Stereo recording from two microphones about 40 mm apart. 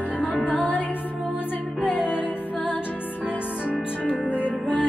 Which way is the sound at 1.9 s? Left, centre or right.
Left.